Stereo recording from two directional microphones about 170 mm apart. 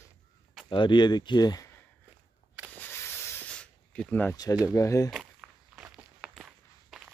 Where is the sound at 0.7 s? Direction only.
30° left (ahead or behind).